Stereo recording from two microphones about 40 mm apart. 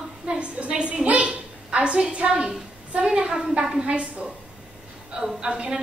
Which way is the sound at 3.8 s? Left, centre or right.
Right.